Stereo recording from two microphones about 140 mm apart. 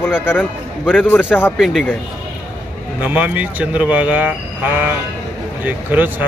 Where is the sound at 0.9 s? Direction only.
10° left (ahead or behind).